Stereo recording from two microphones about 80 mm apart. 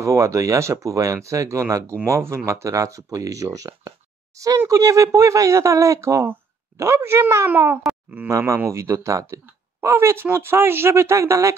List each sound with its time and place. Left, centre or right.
0.0 s speech: right
8.3 s speech: right